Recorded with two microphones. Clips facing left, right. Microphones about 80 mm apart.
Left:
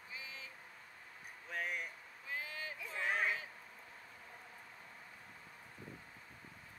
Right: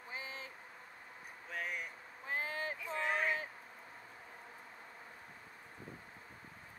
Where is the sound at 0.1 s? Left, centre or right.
Right.